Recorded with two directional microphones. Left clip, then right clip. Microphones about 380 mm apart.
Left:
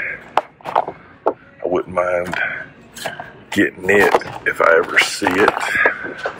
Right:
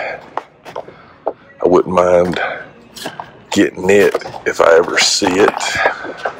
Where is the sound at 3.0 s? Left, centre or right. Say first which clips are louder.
Right 2 dB; centre.